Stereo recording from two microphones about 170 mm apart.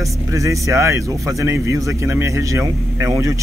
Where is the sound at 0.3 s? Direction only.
20° right (ahead or behind).